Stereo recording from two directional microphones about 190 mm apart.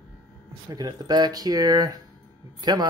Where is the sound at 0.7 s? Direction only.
20° right (ahead or behind).